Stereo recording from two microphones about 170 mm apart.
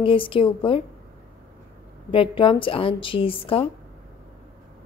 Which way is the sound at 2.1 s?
30° left (ahead or behind).